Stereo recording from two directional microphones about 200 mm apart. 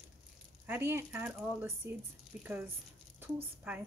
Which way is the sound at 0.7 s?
10° right (ahead or behind).